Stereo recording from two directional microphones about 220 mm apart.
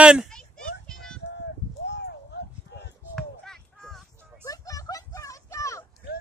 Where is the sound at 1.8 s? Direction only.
50° left (ahead or behind).